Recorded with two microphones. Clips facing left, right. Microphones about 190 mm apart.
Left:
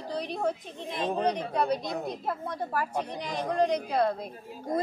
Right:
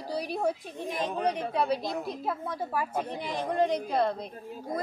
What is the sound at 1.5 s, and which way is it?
Speech, 5° right (ahead or behind).